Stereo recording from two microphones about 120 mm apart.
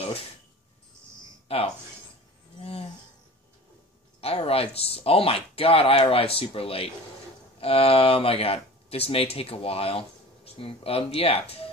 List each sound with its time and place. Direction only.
1.5 s speech: 55° left (ahead or behind)
4.2 s speech: 55° left (ahead or behind)